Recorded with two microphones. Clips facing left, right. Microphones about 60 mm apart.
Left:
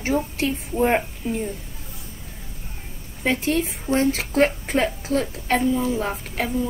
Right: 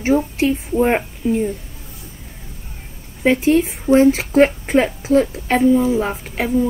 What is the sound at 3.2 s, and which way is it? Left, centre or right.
A woman's voice, centre.